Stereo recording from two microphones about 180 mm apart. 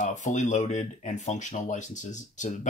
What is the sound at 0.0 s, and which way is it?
Speech, 45° left (ahead or behind).